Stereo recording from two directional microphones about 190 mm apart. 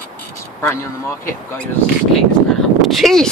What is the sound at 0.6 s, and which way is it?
Speech, 15° left (ahead or behind).